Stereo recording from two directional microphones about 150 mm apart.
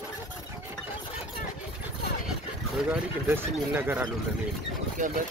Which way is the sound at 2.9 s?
10° right (ahead or behind).